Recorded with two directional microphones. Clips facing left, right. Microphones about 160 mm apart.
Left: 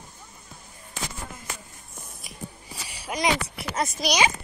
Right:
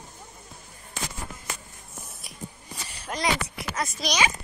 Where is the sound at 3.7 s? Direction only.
20° left (ahead or behind).